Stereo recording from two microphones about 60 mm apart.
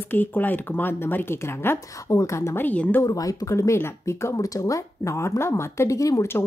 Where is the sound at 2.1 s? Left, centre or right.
Left.